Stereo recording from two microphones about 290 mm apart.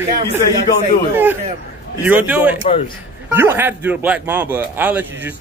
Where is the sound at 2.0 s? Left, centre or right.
Centre.